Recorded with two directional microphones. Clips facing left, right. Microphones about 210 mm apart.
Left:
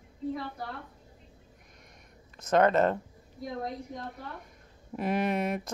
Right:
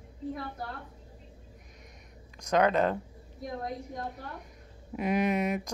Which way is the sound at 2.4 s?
5° left (ahead or behind).